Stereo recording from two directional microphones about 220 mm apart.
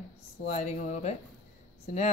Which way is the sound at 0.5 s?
30° left (ahead or behind).